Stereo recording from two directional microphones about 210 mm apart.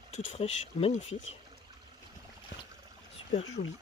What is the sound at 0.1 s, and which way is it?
Speech, 30° left (ahead or behind).